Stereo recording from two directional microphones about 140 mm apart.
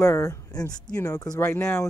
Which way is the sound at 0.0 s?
20° left (ahead or behind).